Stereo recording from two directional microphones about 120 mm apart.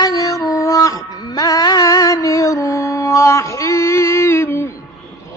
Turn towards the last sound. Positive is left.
turn(degrees=20)  # may be behind; listen again after turning